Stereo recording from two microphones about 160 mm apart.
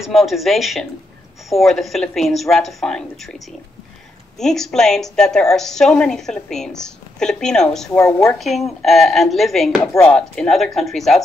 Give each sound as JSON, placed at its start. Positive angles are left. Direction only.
{"t": 0.0, "sound": "a woman's voice", "side_deg": 0}
{"t": 8.0, "sound": "a woman's voice", "side_deg": 20}
{"t": 8.3, "sound": "a woman's voice", "side_deg": 0}